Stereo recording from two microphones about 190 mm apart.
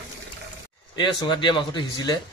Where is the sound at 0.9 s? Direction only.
25° left (ahead or behind).